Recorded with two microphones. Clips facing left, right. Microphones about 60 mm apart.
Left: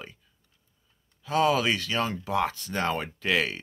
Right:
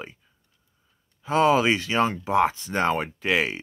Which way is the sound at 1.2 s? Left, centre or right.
Right.